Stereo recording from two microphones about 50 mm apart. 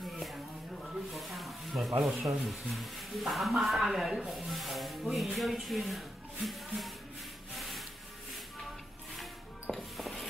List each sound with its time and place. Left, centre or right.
1.1 s a sound: centre
2.4 s speech: centre
9.7 s music: centre